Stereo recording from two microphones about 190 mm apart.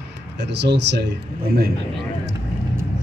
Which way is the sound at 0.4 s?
65° right (ahead or behind).